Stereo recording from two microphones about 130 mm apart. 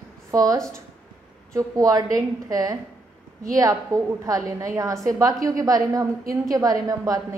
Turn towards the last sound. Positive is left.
turn(degrees=-25)  # may be behind; listen again after turning